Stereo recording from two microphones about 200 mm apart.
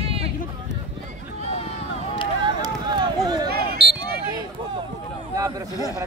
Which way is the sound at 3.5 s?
50° right (ahead or behind).